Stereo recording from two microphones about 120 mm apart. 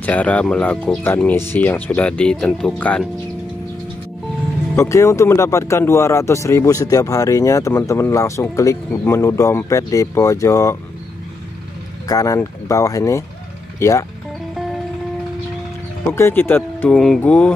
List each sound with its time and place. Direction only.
0.0 s speech: 10° left (ahead or behind)
1.1 s speech: 20° left (ahead or behind)
4.7 s speech: 25° left (ahead or behind)
12.1 s speech: 30° left (ahead or behind)
16.1 s speech: 20° left (ahead or behind)
16.9 s music: 5° left (ahead or behind)
17.2 s speech: 10° left (ahead or behind)